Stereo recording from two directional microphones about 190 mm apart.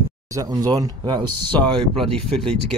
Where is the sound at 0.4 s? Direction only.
20° right (ahead or behind).